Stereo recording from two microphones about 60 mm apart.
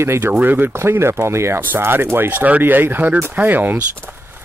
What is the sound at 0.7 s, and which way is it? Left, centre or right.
Speech, right.